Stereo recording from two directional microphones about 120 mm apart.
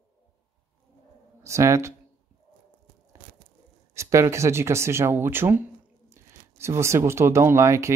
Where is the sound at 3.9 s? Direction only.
25° right (ahead or behind).